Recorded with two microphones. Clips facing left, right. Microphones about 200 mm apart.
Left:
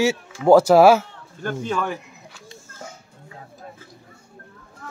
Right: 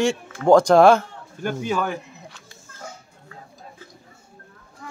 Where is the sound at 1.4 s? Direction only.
10° right (ahead or behind).